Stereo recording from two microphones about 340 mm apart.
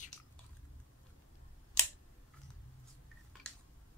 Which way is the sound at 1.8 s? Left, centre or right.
Centre.